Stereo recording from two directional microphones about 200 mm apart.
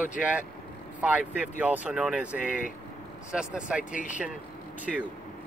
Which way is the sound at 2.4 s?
40° left (ahead or behind).